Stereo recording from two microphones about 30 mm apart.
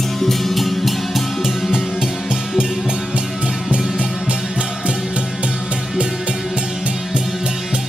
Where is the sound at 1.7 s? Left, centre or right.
Right.